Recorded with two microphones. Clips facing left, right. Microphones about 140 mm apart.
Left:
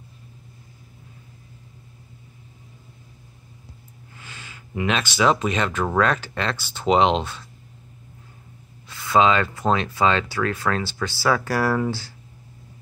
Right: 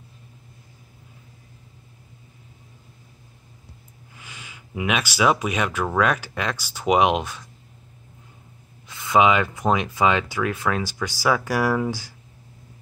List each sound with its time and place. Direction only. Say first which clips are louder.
4.2 s speech: left 1 dB; 10° right (ahead or behind)
8.8 s speech: even; 15° right (ahead or behind)